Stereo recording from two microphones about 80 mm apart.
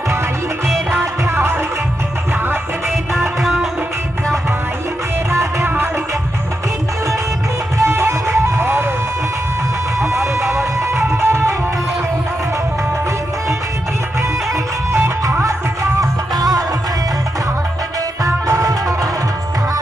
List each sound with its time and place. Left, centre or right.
0.9 s music: right
3.2 s music: centre
5.3 s music: right
7.8 s music: right
9.9 s music: right
14.5 s music: right
16.3 s music: right
18.2 s music: right